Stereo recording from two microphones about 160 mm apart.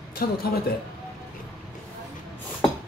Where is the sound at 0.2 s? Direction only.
70° left (ahead or behind).